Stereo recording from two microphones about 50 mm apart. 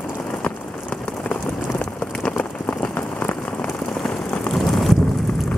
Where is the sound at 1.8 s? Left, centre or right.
Left.